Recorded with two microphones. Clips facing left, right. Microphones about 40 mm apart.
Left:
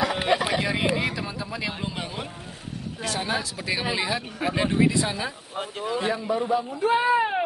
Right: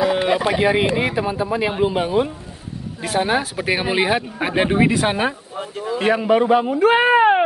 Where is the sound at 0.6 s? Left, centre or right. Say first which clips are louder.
Right 7 dB; right.